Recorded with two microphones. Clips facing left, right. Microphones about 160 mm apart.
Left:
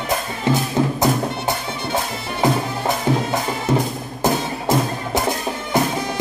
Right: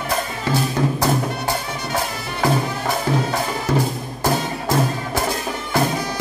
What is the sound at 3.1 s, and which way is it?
Music, 20° left (ahead or behind).